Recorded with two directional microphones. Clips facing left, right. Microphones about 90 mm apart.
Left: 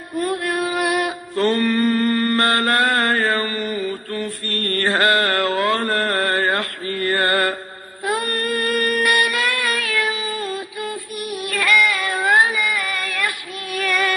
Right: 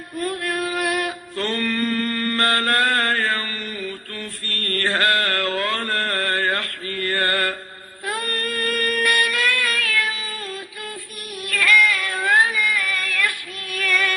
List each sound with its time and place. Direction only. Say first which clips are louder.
0.1 s music: left 4 dB; 15° left (ahead or behind)